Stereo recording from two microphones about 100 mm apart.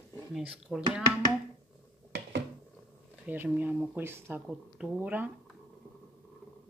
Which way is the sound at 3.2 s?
15° right (ahead or behind).